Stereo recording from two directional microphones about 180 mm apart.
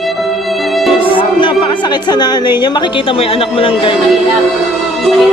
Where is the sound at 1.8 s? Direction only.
25° left (ahead or behind).